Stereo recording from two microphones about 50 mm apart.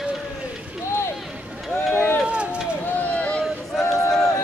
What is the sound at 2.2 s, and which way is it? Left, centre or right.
Run, right.